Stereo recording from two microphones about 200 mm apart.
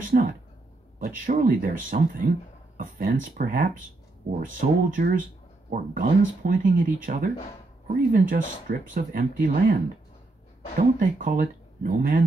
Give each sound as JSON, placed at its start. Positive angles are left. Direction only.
{"t": 0.1, "sound": "speech", "side_deg": -50}
{"t": 10.8, "sound": "speech", "side_deg": -45}